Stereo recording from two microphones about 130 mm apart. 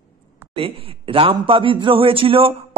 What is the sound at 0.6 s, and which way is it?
Speech, 45° right (ahead or behind).